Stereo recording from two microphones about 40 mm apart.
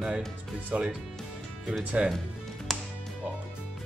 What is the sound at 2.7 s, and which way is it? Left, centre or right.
Music, centre.